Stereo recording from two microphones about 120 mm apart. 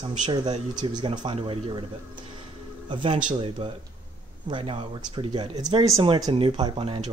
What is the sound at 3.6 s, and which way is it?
Speech, 45° right (ahead or behind).